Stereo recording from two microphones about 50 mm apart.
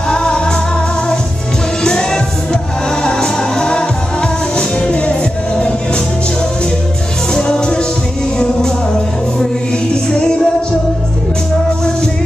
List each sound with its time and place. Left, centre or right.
0.1 s music: centre
1.8 s music: centre
7.3 s music: centre
10.1 s music: centre